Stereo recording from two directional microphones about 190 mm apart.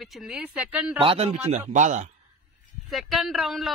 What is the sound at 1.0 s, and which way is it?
A man's voice, 30° right (ahead or behind).